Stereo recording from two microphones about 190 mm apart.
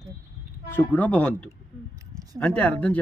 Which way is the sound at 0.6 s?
10° left (ahead or behind).